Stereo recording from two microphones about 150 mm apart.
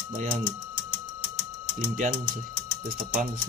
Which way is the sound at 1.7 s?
60° right (ahead or behind).